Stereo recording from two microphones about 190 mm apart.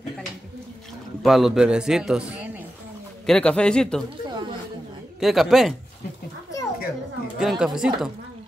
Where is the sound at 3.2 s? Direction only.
5° left (ahead or behind).